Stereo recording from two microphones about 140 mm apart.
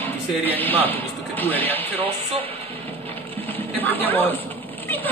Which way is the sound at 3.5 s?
15° left (ahead or behind).